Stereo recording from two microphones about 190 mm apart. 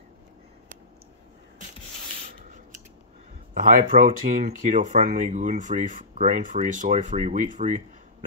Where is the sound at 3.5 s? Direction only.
45° right (ahead or behind).